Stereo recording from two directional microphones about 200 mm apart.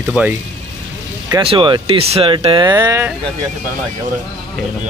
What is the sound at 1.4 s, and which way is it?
Speech, 25° right (ahead or behind).